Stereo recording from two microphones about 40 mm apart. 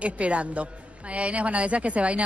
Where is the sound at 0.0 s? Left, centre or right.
Right.